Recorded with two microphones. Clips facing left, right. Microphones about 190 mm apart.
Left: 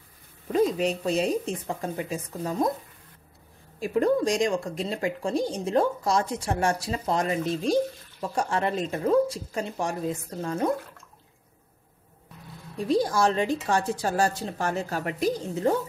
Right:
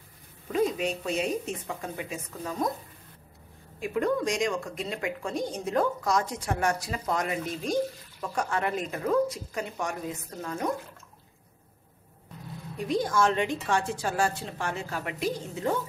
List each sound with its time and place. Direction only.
0.5 s a woman's voice: 35° left (ahead or behind)
3.8 s a woman's voice: 35° left (ahead or behind)
12.7 s a woman's voice: 35° left (ahead or behind)